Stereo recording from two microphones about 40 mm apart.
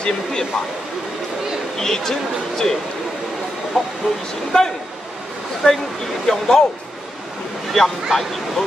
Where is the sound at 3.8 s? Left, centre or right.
Centre.